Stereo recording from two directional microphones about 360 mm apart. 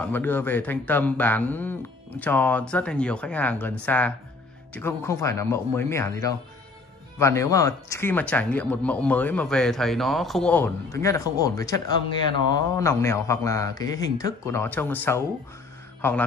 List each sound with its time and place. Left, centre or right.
0.0 s a man's voice: centre